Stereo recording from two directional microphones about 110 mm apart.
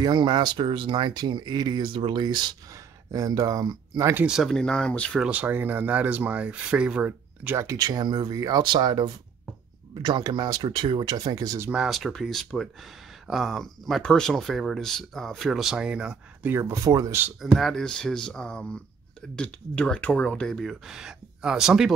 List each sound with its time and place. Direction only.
0.0 s speech: 45° right (ahead or behind)
3.1 s speech: 30° right (ahead or behind)
4.3 s speech: centre (ahead or behind)
5.2 s speech: 10° right (ahead or behind)
7.6 s speech: 30° right (ahead or behind)
11.7 s speech: 5° right (ahead or behind)
16.5 s speech: 25° right (ahead or behind)
17.4 s speech: centre (ahead or behind)